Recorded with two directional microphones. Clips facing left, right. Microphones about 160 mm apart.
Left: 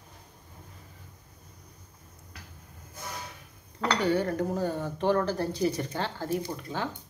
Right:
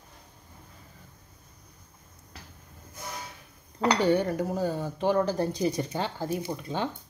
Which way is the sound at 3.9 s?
20° right (ahead or behind).